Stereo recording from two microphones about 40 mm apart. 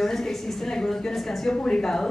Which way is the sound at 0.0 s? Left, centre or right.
Centre.